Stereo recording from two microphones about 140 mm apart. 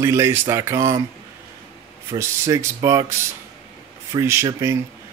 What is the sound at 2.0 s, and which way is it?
A man's voice, 20° right (ahead or behind).